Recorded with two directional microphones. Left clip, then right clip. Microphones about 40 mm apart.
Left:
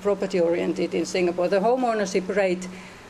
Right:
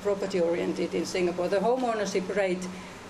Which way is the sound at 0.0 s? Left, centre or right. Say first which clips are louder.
Left 4 dB; left.